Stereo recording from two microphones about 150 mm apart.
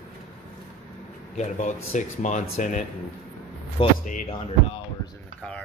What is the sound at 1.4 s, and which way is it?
Speech, 50° left (ahead or behind).